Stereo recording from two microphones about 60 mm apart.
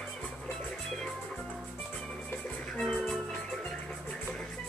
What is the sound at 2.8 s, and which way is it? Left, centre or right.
Music, centre.